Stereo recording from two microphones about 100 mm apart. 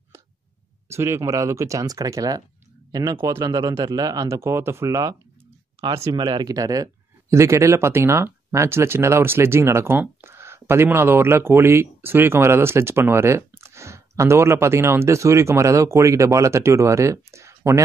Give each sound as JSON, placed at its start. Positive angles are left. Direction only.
{"t": 0.8, "sound": "speech", "side_deg": -25}
{"t": 3.4, "sound": "speech", "side_deg": -50}
{"t": 3.8, "sound": "speech", "side_deg": -40}
{"t": 6.1, "sound": "speech", "side_deg": -50}